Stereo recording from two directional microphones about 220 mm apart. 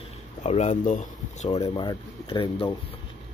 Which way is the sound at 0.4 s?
30° left (ahead or behind).